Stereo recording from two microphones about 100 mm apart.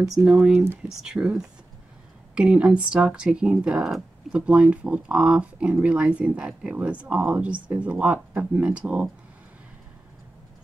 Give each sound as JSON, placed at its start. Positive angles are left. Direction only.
{"t": 0.3, "sound": "speech", "side_deg": -10}